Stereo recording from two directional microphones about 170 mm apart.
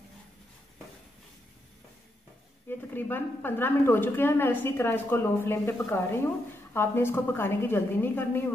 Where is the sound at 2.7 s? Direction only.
10° left (ahead or behind).